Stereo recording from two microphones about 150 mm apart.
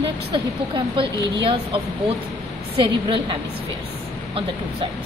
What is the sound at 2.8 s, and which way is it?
Speech, 35° right (ahead or behind).